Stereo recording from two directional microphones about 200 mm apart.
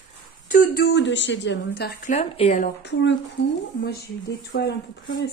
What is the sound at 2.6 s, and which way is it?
Speech, 60° left (ahead or behind).